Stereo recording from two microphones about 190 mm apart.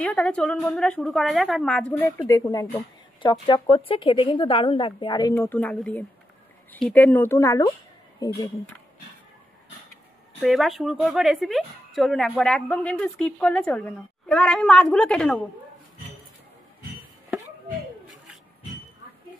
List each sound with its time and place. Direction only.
0.0 s speech: 5° left (ahead or behind); by 5.3 s 25° left (ahead or behind)
5.3 s speech: 10° left (ahead or behind)
10.4 s speech: centre (ahead or behind)